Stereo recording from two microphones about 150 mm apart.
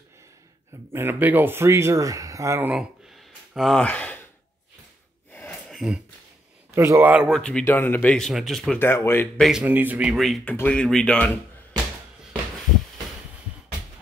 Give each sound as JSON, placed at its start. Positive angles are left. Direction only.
{"t": 0.9, "sound": "speech", "side_deg": -15}
{"t": 2.7, "sound": "a sound", "side_deg": -5}
{"t": 5.3, "sound": "gasp", "side_deg": 10}
{"t": 5.7, "sound": "a sound", "side_deg": 0}
{"t": 6.7, "sound": "speech", "side_deg": -15}
{"t": 7.2, "sound": "speech", "side_deg": 5}
{"t": 8.7, "sound": "speech", "side_deg": 15}
{"t": 9.4, "sound": "speech", "side_deg": -5}
{"t": 10.4, "sound": "speech", "side_deg": 10}